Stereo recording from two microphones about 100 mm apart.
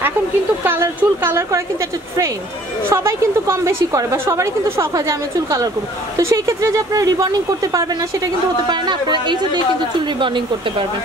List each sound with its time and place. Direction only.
0.7 s a woman's voice: 25° right (ahead or behind)
2.9 s a woman's voice: 30° right (ahead or behind)
8.6 s speech: 50° right (ahead or behind)